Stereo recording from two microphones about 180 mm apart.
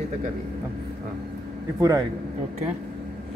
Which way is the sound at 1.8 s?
20° right (ahead or behind).